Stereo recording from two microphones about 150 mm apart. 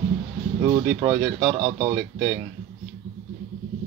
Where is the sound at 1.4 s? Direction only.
35° right (ahead or behind).